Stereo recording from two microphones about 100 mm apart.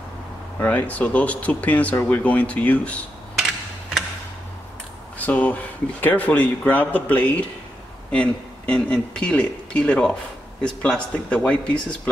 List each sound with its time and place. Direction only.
0.6 s speech: 15° left (ahead or behind)
5.2 s speech: 15° left (ahead or behind)